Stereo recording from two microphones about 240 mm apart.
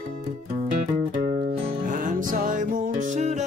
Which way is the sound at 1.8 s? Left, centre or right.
Right.